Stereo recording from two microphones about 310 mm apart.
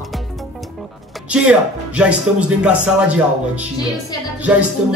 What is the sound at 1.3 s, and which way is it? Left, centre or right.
Speech, centre.